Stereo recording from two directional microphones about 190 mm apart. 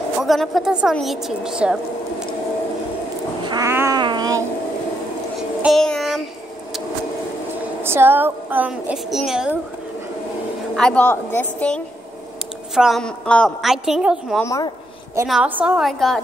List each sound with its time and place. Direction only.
0.2 s a woman's voice: centre (ahead or behind)
3.4 s cat: 15° right (ahead or behind)
5.6 s child singing: centre (ahead or behind)
7.8 s a woman's voice: 10° right (ahead or behind)
10.8 s a woman's voice: 5° left (ahead or behind)
14.4 s a woman's voice: 15° left (ahead or behind)
15.2 s a woman's voice: 5° right (ahead or behind)